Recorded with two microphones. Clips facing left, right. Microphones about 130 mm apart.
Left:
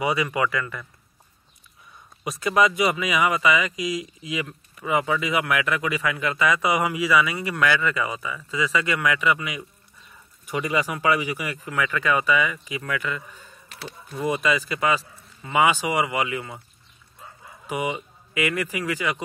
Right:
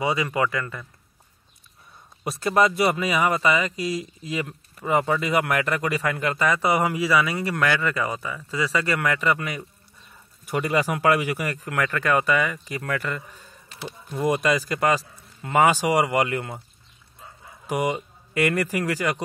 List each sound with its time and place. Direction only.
0.0 s speech: 25° right (ahead or behind)
2.2 s speech: 35° right (ahead or behind)
10.9 s speech: 60° right (ahead or behind); by 16.3 s 40° right (ahead or behind)
17.6 s speech: 40° right (ahead or behind)